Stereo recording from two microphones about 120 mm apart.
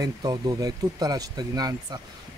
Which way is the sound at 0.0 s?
35° right (ahead or behind).